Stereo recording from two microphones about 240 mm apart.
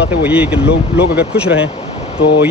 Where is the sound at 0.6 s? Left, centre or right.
Left.